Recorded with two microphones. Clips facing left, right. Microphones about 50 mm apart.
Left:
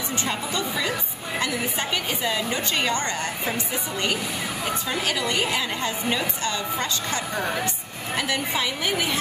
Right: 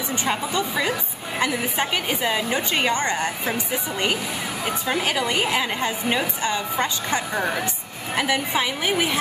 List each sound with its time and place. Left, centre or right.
0.2 s a woman's voice: centre